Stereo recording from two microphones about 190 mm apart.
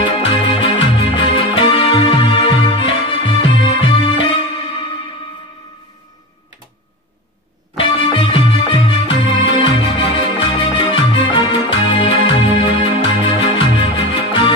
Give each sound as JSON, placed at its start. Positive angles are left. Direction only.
{"t": 0.0, "sound": "music", "side_deg": 25}
{"t": 7.7, "sound": "music", "side_deg": 25}